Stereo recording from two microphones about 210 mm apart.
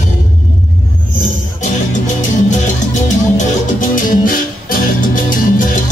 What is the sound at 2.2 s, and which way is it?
Music, 35° left (ahead or behind).